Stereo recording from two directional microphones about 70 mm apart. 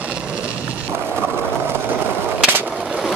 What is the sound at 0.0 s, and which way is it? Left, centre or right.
Music, centre.